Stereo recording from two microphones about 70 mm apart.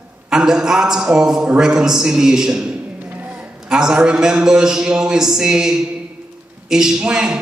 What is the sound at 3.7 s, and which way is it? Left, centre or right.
A man's voice, centre.